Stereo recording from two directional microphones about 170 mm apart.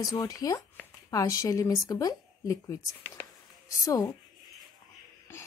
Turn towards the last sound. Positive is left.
turn(degrees=20)  # may be behind; listen again after turning